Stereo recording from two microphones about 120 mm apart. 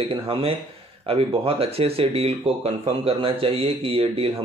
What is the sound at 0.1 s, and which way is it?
Speech, 55° right (ahead or behind).